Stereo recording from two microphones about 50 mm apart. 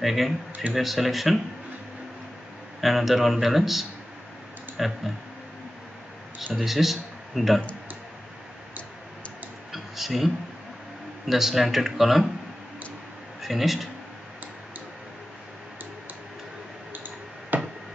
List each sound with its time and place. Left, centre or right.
0.0 s speech: centre
2.8 s speech: centre
6.5 s speech: centre
9.7 s a sound: centre
11.2 s speech: centre
13.4 s a man's voice: centre
16.9 s clicking: right